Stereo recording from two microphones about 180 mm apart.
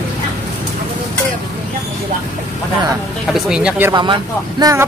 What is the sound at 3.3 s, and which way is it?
Speech, 5° right (ahead or behind).